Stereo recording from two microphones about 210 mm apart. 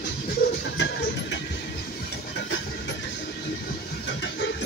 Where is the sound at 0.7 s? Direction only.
55° left (ahead or behind).